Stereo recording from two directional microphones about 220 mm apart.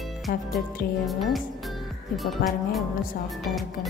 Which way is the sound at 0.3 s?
45° left (ahead or behind).